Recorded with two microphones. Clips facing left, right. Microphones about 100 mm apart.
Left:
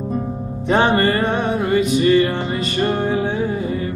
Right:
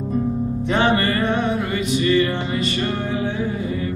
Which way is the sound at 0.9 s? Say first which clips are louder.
Left 3 dB; 35° left (ahead or behind).